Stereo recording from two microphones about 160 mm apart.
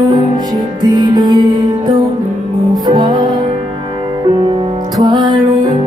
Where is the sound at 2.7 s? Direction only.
25° right (ahead or behind).